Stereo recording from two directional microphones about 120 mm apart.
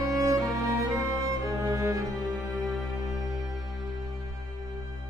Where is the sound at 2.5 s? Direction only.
5° right (ahead or behind).